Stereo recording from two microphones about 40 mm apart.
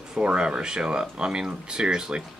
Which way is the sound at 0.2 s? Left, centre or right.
Right.